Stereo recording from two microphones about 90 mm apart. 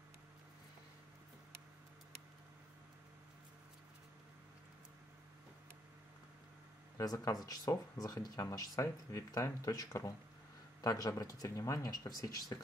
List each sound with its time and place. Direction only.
7.0 s speech: 40° left (ahead or behind)